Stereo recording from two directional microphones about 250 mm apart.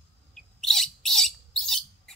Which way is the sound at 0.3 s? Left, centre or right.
Centre.